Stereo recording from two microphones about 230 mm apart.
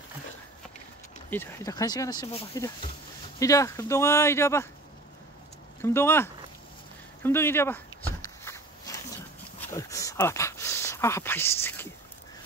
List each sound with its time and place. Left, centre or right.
1.3 s speech: centre
5.8 s speech: centre
7.2 s walk: centre
9.6 s a sound: centre